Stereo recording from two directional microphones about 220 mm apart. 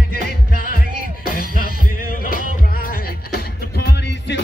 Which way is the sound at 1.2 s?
40° left (ahead or behind).